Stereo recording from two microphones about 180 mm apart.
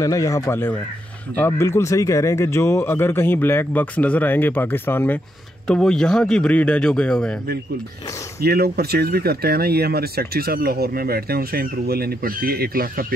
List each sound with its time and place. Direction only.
0.0 s speech: 20° left (ahead or behind)
8.4 s speech: 60° right (ahead or behind)